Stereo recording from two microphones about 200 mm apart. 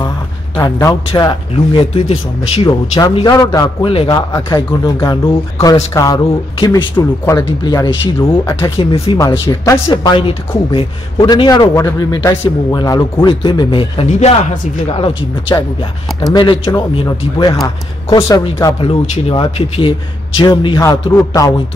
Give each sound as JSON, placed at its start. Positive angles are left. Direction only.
{"t": 0.6, "sound": "speech", "side_deg": 15}
{"t": 4.3, "sound": "speech", "side_deg": 15}
{"t": 9.2, "sound": "speech", "side_deg": 15}